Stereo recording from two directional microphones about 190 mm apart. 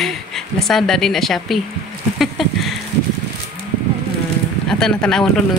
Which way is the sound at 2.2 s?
Centre (ahead or behind).